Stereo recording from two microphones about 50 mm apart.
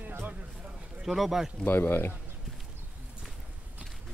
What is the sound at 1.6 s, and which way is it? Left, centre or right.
Speech, left.